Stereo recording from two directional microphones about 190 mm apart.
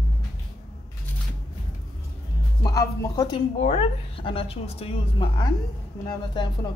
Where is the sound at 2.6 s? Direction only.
20° left (ahead or behind).